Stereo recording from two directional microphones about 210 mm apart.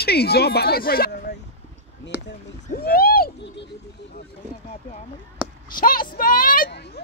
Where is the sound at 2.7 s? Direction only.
45° left (ahead or behind).